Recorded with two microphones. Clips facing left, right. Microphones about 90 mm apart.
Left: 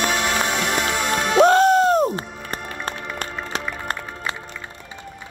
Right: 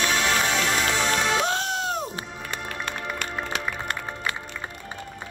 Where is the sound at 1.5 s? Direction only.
45° left (ahead or behind).